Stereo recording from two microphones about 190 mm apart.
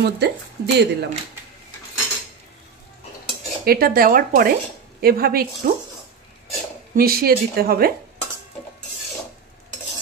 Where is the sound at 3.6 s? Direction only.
50° right (ahead or behind).